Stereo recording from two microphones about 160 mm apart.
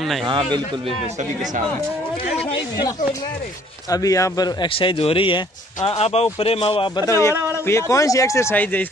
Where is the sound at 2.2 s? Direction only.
40° left (ahead or behind).